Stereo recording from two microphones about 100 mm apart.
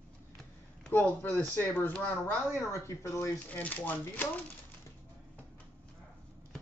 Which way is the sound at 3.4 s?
15° left (ahead or behind).